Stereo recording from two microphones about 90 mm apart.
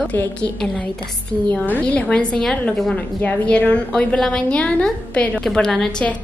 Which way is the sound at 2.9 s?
15° left (ahead or behind).